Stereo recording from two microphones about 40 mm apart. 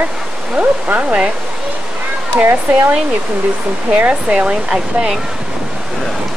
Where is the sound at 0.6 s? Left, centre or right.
Right.